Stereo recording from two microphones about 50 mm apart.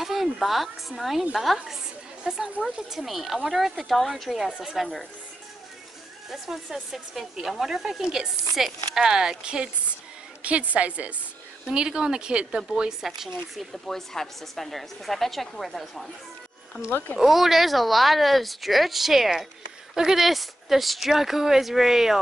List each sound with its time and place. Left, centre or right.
0.0 s speech: centre
2.2 s a woman's voice: centre
2.9 s speech: centre
4.6 s a woman's voice: centre
6.3 s a woman's voice: centre
10.7 s a woman's voice: right
11.7 s a woman's voice: centre
13.0 s a woman's voice: centre
13.8 s speech: centre
17.2 s speech: centre